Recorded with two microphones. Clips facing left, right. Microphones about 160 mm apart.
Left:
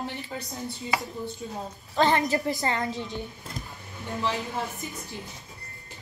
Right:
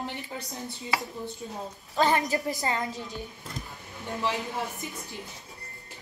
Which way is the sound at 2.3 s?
10° right (ahead or behind).